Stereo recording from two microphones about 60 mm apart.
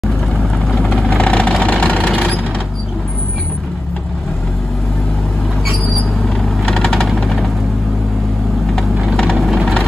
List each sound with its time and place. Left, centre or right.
0.7 s vehicle: centre
1.2 s vehicle: centre
6.2 s vehicle: centre
9.1 s vehicle: centre
9.4 s vehicle: centre